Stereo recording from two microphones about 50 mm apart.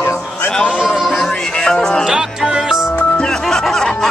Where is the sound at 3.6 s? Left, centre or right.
Centre.